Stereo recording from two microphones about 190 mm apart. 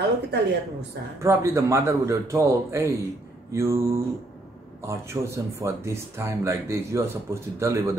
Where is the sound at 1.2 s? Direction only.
15° right (ahead or behind).